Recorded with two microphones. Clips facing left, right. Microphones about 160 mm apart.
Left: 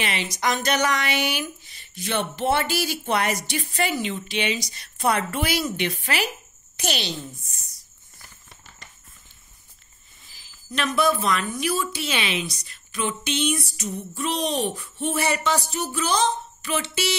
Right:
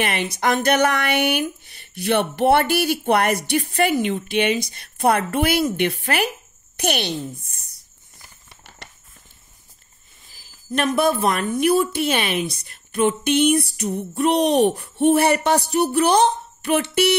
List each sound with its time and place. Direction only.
0.0 s speech: 55° right (ahead or behind)
10.3 s speech: 50° right (ahead or behind)